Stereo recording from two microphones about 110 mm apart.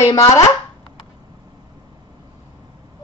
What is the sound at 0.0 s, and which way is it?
Speech, 30° left (ahead or behind).